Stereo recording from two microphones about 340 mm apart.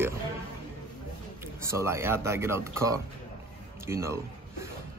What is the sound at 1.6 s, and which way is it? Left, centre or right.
Speech, centre.